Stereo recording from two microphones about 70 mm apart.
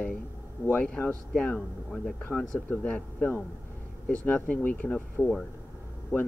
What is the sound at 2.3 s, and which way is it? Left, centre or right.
Speech, centre.